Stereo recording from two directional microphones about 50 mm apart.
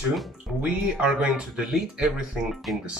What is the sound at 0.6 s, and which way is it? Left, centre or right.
Speech, right.